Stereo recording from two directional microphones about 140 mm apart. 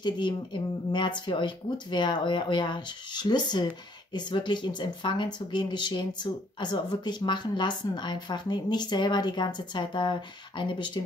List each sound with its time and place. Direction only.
0.0 s speech: 35° left (ahead or behind)